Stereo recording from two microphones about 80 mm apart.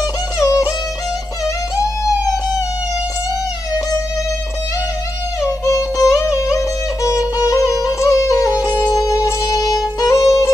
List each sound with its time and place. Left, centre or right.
0.4 s music: left
5.7 s music: left